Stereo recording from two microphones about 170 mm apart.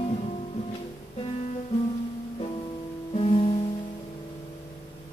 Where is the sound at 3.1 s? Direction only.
35° left (ahead or behind).